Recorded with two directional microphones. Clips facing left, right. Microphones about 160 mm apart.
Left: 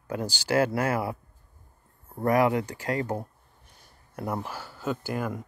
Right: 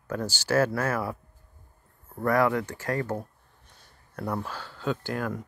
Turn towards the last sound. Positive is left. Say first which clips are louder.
# even
turn(degrees=5)  # may be behind; listen again after turning